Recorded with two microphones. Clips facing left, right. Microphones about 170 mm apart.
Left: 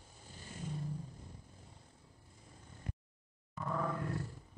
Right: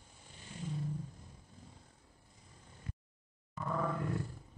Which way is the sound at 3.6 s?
Centre (ahead or behind).